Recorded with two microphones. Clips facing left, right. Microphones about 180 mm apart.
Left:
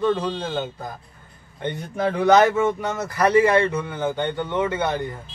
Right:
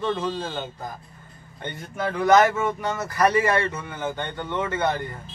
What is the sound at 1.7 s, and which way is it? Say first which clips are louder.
Speech: left 5 dB; 25° left (ahead or behind).